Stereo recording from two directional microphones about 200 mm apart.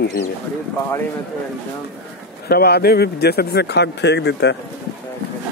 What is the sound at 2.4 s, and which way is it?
Speech, 50° left (ahead or behind).